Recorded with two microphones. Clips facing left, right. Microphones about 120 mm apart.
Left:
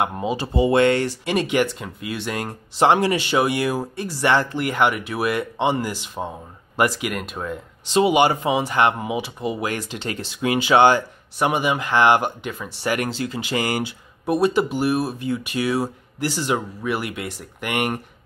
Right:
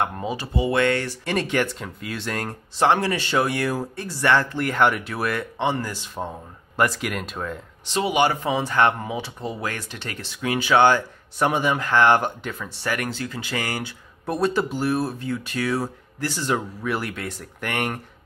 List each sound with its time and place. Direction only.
0.0 s speech: 20° left (ahead or behind)
1.2 s speech: 10° left (ahead or behind)
2.8 s speech: 15° left (ahead or behind)
7.9 s speech: 20° left (ahead or behind)
12.8 s speech: 20° left (ahead or behind)